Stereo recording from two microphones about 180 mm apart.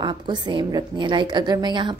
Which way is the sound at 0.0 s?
25° right (ahead or behind).